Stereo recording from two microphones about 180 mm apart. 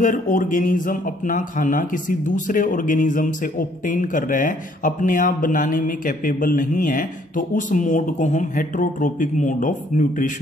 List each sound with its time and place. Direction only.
0.0 s speech: 45° left (ahead or behind)